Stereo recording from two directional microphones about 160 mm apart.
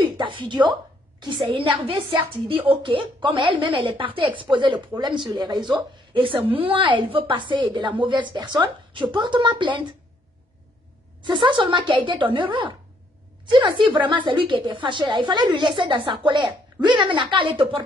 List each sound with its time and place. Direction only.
0.0 s a woman's voice: 30° right (ahead or behind)
11.2 s a woman's voice: 30° right (ahead or behind)